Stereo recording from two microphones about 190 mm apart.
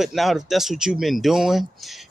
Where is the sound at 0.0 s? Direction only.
Centre (ahead or behind).